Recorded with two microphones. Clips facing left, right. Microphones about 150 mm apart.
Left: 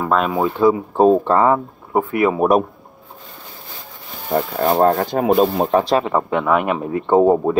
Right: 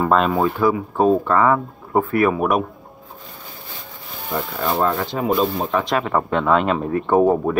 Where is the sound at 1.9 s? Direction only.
15° left (ahead or behind).